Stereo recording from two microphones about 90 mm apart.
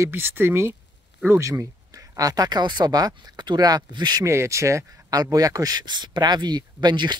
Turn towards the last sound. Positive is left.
turn(degrees=-50)  # may be behind; listen again after turning